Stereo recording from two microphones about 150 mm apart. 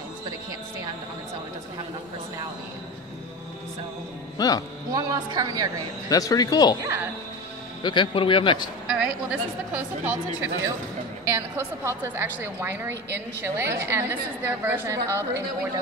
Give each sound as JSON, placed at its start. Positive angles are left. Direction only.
{"t": 4.4, "sound": "speech", "side_deg": 25}
{"t": 4.9, "sound": "a woman's voice", "side_deg": -25}
{"t": 6.0, "sound": "speech", "side_deg": 25}
{"t": 7.8, "sound": "a man's voice", "side_deg": 30}
{"t": 8.8, "sound": "a sound", "side_deg": -5}
{"t": 9.7, "sound": "a woman's voice", "side_deg": -10}